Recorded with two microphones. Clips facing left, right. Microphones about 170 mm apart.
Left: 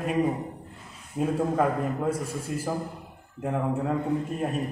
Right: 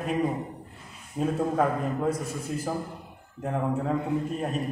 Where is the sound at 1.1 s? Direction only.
5° left (ahead or behind).